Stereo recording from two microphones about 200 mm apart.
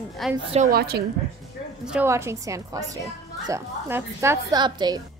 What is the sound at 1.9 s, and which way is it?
A woman's voice, 10° right (ahead or behind).